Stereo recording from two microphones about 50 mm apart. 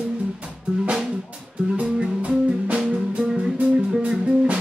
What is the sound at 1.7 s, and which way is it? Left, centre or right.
Music, right.